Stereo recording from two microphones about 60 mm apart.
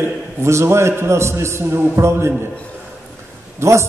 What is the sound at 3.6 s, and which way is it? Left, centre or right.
Speech, right.